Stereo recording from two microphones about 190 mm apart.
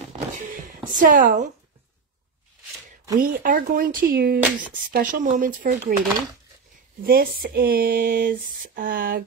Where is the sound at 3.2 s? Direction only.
50° right (ahead or behind).